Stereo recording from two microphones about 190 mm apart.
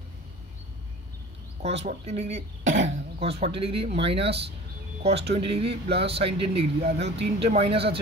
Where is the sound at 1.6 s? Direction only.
35° right (ahead or behind).